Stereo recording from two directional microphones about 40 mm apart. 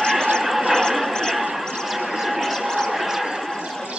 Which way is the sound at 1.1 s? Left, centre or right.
Centre.